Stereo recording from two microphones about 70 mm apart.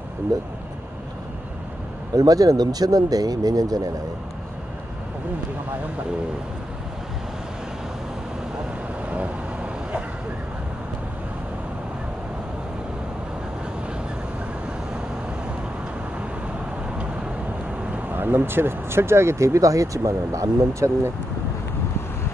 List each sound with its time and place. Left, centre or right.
0.3 s speech: right
2.1 s speech: right
9.1 s vehicle: centre
17.9 s speech: right